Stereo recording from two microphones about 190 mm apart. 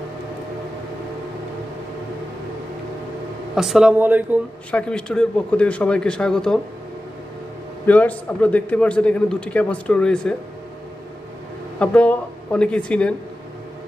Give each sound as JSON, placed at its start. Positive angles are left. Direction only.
{"t": 3.5, "sound": "a man's voice", "side_deg": 0}
{"t": 4.6, "sound": "a man's voice", "side_deg": 5}
{"t": 7.8, "sound": "a man's voice", "side_deg": 10}
{"t": 11.8, "sound": "a man's voice", "side_deg": 5}